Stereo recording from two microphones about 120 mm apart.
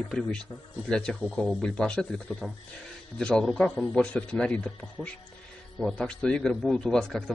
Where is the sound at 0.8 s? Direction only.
5° left (ahead or behind).